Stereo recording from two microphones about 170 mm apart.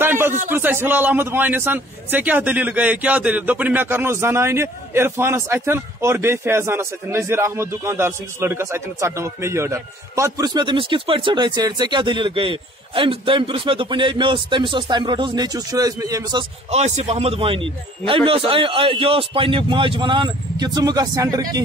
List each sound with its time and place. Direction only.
0.0 s a sound: 10° right (ahead or behind)
0.5 s a man's voice: 10° right (ahead or behind)
16.7 s a man's voice: 40° right (ahead or behind); by 21.5 s 20° right (ahead or behind)